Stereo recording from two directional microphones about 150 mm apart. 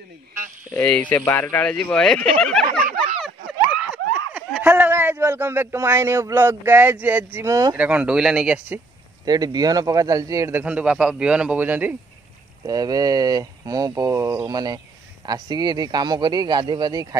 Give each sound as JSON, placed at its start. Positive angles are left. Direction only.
{"t": 1.1, "sound": "speech", "side_deg": 15}
{"t": 3.7, "sound": "speech", "side_deg": -10}
{"t": 7.8, "sound": "a man's voice", "side_deg": -10}
{"t": 9.2, "sound": "speech", "side_deg": -25}
{"t": 10.6, "sound": "a man's voice", "side_deg": -10}
{"t": 12.6, "sound": "speech", "side_deg": -25}